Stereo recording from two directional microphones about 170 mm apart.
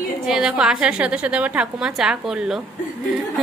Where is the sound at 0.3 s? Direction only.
5° right (ahead or behind).